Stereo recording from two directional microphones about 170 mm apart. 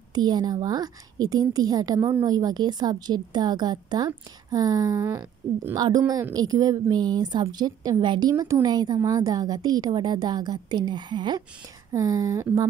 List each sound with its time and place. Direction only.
0.1 s a woman's voice: 25° right (ahead or behind)